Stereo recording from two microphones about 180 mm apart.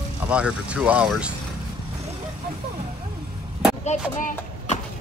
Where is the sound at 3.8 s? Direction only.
40° left (ahead or behind).